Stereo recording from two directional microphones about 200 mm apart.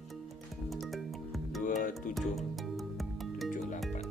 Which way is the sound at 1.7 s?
40° left (ahead or behind).